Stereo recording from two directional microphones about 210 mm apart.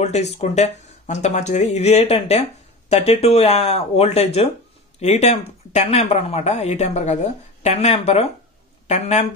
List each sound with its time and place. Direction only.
0.0 s a woman's voice: 30° left (ahead or behind)